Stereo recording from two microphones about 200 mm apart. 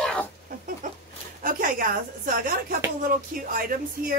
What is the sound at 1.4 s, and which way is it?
Speech, 45° right (ahead or behind).